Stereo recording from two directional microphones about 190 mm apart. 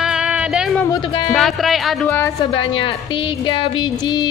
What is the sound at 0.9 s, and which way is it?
Speech, 25° left (ahead or behind).